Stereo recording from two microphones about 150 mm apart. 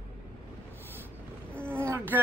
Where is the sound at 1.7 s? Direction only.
15° right (ahead or behind).